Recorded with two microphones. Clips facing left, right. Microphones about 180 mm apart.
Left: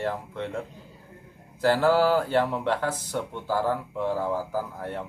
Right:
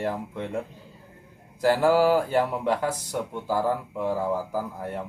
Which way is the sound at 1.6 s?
10° right (ahead or behind).